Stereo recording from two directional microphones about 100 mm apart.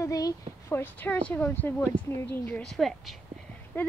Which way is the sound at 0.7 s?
20° left (ahead or behind).